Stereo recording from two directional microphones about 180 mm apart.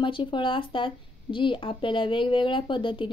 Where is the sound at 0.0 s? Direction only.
25° left (ahead or behind).